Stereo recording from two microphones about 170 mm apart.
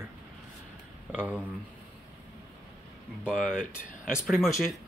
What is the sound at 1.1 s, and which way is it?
Speech, 10° right (ahead or behind).